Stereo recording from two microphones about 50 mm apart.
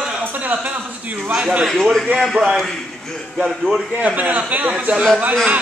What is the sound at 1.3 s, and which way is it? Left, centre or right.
Speech, centre.